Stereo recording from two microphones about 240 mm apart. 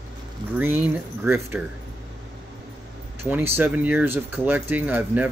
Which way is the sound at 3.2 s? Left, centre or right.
Centre.